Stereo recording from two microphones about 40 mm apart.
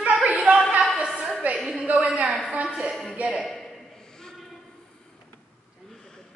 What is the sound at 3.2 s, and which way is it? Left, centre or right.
Speech, right.